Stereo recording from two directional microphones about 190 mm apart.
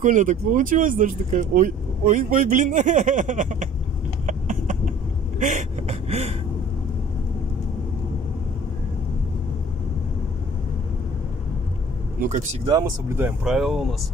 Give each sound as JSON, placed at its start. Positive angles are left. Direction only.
{"t": 0.0, "sound": "speech", "side_deg": -40}
{"t": 4.3, "sound": "a sound", "side_deg": -40}
{"t": 12.2, "sound": "speech", "side_deg": -40}
{"t": 12.7, "sound": "speech", "side_deg": -15}
{"t": 13.4, "sound": "speech", "side_deg": 0}